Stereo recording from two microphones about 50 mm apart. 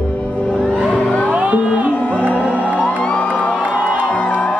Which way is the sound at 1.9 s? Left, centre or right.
Left.